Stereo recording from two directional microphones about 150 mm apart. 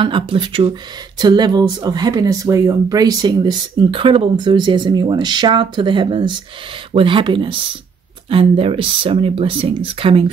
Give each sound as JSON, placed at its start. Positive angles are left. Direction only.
{"t": 0.0, "sound": "speech", "side_deg": -35}